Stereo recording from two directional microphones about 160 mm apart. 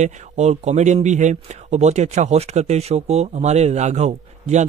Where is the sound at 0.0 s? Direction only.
45° right (ahead or behind).